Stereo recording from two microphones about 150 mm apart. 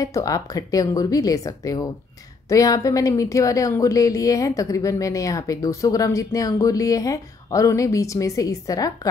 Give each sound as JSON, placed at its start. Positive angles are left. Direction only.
{"t": 0.0, "sound": "a woman's voice", "side_deg": 25}